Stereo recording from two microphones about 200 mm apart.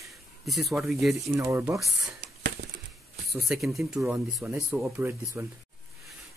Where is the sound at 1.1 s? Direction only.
15° right (ahead or behind).